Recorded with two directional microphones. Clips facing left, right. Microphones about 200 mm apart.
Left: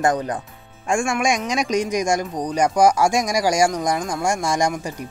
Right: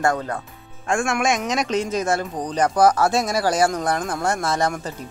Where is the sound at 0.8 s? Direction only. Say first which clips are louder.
Left 1 dB; centre (ahead or behind).